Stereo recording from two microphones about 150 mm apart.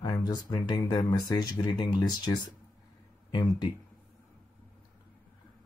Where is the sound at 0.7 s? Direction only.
30° left (ahead or behind).